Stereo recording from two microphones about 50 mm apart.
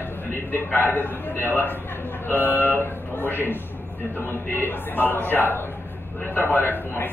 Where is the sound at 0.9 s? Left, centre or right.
Left.